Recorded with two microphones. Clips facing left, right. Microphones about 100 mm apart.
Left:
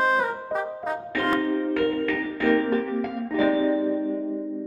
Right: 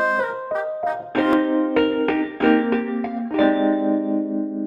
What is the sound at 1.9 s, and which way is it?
Music, 60° right (ahead or behind).